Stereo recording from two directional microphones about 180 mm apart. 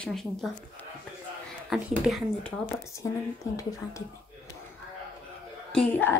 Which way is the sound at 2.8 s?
15° left (ahead or behind).